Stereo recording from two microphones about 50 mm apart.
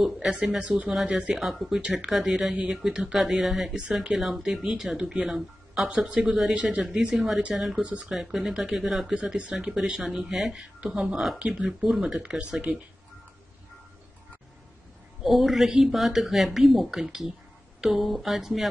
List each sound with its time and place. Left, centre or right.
0.3 s speech: centre
1.3 s speech: centre
1.8 s speech: right
2.0 s speech: centre
5.9 s speech: right
7.2 s speech: centre
7.8 s speech: right
8.1 s speech: centre
9.4 s speech: right
10.3 s speech: centre
10.8 s speech: centre
11.6 s speech: centre
15.2 s speech: centre